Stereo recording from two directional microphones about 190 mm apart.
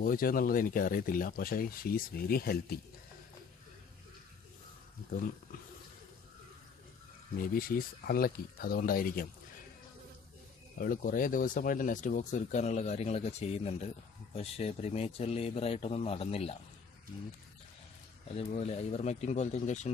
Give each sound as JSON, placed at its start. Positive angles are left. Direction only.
{"t": 0.0, "sound": "speech", "side_deg": 50}
{"t": 7.3, "sound": "speech", "side_deg": 50}
{"t": 10.8, "sound": "speech", "side_deg": 50}
{"t": 18.3, "sound": "speech", "side_deg": 35}